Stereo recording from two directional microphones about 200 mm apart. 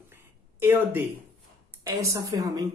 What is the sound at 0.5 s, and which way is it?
Speech, 10° right (ahead or behind).